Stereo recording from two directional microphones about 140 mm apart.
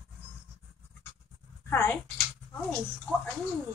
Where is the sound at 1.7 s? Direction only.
15° left (ahead or behind).